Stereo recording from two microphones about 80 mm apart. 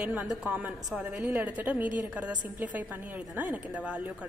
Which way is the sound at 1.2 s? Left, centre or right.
Right.